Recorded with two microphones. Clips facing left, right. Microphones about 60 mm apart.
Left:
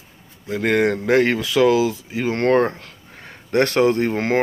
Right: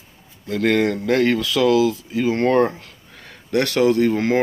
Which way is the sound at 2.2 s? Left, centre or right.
Left.